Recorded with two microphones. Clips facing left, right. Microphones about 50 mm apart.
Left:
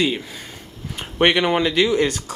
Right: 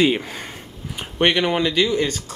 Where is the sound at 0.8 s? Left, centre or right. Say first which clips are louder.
Even; centre.